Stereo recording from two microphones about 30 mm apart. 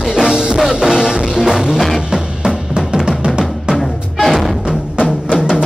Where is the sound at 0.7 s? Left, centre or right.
Centre.